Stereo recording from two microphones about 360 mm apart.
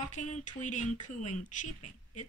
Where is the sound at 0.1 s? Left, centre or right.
Centre.